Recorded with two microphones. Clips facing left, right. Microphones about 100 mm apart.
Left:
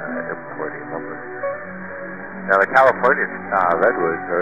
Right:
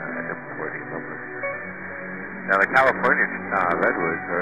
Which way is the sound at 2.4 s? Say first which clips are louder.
Left 5 dB; 25° left (ahead or behind).